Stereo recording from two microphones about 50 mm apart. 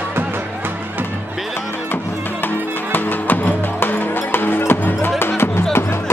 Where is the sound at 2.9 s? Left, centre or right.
Left.